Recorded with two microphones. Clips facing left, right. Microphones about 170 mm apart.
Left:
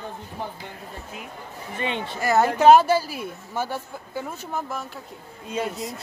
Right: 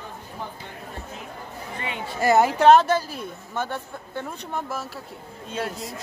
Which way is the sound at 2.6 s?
5° left (ahead or behind).